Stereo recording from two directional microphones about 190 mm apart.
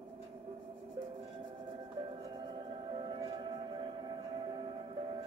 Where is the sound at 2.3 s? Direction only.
25° right (ahead or behind).